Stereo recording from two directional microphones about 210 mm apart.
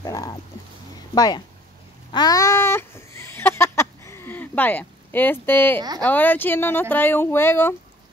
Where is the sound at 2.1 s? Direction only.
15° left (ahead or behind).